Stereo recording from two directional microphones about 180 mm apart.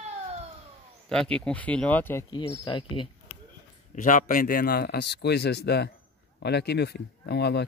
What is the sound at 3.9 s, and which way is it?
A man's voice, 45° left (ahead or behind).